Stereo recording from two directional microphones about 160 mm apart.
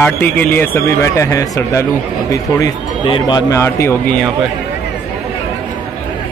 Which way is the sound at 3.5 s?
15° left (ahead or behind).